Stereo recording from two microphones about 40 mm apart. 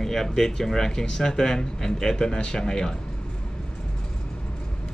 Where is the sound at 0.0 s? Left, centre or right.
Centre.